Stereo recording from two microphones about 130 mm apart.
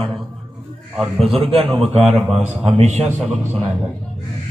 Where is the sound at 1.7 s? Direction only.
Centre (ahead or behind).